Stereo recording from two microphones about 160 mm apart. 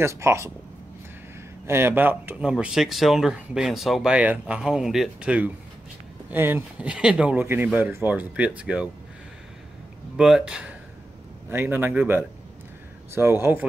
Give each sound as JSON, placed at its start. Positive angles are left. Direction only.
{"t": 0.0, "sound": "speech", "side_deg": -15}
{"t": 1.7, "sound": "speech", "side_deg": -15}
{"t": 10.1, "sound": "speech", "side_deg": -5}